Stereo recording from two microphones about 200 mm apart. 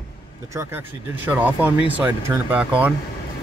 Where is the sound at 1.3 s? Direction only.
5° right (ahead or behind).